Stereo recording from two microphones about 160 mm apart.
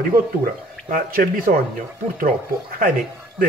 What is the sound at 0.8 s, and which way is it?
Speech, 60° right (ahead or behind).